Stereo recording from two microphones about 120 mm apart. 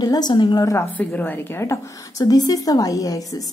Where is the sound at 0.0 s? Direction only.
35° left (ahead or behind).